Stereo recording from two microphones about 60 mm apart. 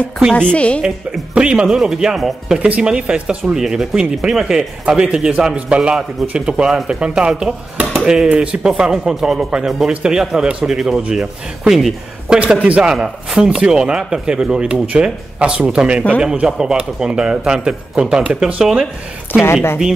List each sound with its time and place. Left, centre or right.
0.3 s a woman's voice: centre
0.8 s speech: centre
2.6 s speech: centre
4.8 s a man's voice: right; by 12.4 s centre
12.6 s a man's voice: right
18.6 s speech: centre
19.4 s speech: left